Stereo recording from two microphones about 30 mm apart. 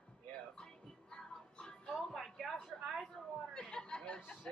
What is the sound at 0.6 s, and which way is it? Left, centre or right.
Music, left.